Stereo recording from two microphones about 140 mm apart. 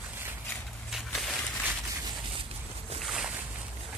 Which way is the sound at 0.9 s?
Centre (ahead or behind).